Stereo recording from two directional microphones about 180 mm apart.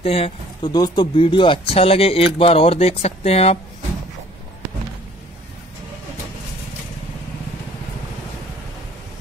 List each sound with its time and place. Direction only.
0.0 s speech: 35° left (ahead or behind)
0.7 s speech: 20° left (ahead or behind)